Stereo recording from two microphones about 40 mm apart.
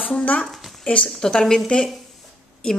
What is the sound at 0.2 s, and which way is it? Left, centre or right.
Speech, left.